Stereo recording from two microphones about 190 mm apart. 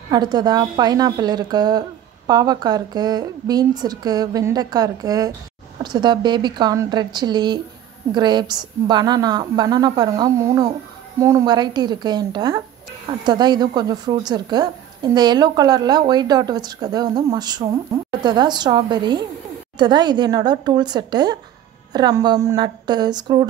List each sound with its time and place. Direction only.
0.1 s a woman's voice: 20° right (ahead or behind)